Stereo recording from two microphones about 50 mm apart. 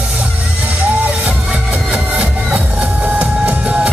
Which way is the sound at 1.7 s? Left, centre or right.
Right.